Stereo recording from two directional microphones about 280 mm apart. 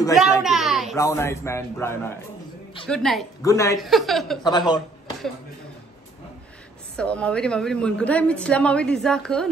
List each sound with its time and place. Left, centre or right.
0.1 s a sound: centre
0.9 s a man's voice: centre
3.7 s a woman's voice: centre
4.4 s a man's voice: centre
7.0 s a woman's voice: centre